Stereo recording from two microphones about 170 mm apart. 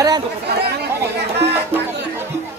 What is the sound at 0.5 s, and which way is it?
Chatter, 70° right (ahead or behind).